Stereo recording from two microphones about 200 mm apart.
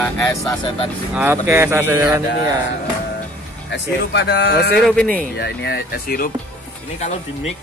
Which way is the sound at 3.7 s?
60° left (ahead or behind).